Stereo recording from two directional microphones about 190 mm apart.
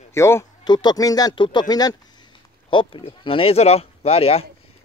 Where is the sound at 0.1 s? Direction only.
15° left (ahead or behind).